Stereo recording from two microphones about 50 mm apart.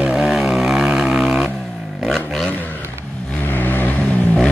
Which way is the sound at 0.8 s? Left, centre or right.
Centre.